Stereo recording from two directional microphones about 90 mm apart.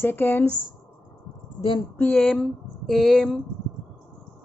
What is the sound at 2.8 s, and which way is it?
Speech, centre (ahead or behind).